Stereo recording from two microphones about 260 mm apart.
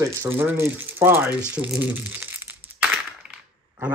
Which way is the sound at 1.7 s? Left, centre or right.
Centre.